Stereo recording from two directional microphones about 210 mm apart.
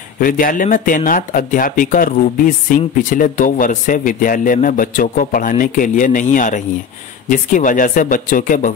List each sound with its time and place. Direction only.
0.2 s speech: 40° left (ahead or behind)